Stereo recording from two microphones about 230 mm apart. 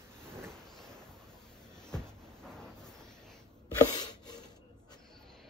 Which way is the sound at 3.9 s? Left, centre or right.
Centre.